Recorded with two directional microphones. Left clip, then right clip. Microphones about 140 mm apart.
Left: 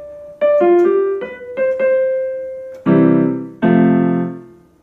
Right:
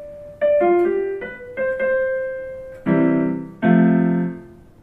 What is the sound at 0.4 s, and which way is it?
Music, 25° left (ahead or behind).